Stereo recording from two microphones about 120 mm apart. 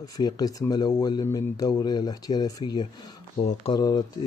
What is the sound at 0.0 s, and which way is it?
Speech, 30° left (ahead or behind).